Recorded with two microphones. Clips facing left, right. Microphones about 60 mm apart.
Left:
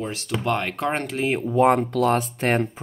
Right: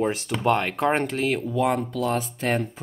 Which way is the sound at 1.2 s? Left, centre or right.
Left.